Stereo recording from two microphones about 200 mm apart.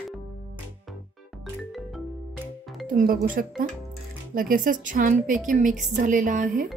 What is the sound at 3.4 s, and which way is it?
A woman's voice, 45° right (ahead or behind).